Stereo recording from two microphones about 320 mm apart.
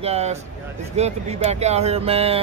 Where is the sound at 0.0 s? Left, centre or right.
Centre.